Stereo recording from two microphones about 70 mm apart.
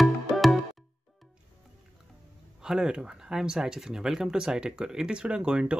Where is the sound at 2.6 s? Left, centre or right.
Centre.